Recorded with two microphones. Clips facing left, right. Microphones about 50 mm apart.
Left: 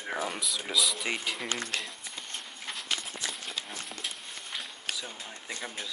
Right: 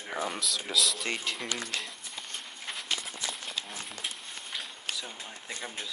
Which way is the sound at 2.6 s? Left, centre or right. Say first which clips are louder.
Even; centre.